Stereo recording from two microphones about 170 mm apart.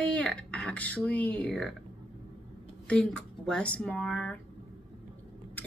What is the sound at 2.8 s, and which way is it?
A woman's voice, 5° left (ahead or behind).